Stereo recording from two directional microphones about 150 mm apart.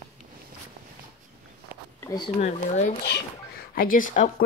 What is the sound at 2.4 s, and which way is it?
Speech, 50° left (ahead or behind).